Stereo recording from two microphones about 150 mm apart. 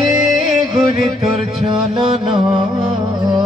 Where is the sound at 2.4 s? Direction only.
35° right (ahead or behind).